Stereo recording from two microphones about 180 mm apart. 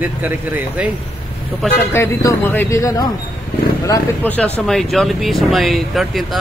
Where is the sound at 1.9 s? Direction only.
10° left (ahead or behind).